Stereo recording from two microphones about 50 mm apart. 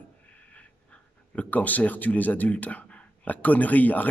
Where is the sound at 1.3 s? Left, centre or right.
Left.